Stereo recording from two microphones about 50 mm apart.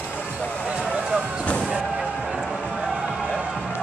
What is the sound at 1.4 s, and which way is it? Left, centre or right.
Slam, left.